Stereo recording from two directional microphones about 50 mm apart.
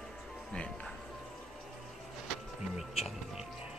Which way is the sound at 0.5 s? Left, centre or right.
Centre.